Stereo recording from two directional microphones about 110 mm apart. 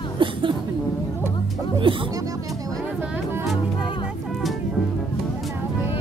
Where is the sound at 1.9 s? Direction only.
50° right (ahead or behind).